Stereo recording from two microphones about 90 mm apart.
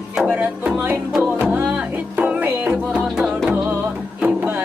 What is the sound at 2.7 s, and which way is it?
Music, 5° right (ahead or behind).